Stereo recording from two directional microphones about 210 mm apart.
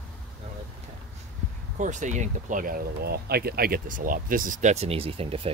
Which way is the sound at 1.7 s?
35° right (ahead or behind).